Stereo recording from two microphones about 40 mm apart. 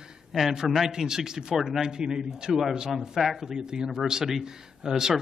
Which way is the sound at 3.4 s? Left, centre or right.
Centre.